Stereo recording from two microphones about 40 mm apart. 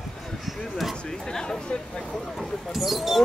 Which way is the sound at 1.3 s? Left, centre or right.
Centre.